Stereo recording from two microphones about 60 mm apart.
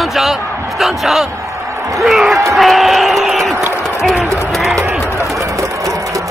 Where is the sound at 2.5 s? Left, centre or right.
Centre.